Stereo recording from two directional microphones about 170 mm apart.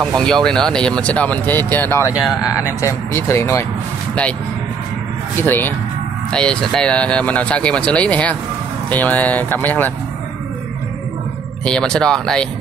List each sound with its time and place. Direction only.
0.0 s speech: centre (ahead or behind)
5.4 s speech: 10° left (ahead or behind)
11.6 s speech: 5° left (ahead or behind)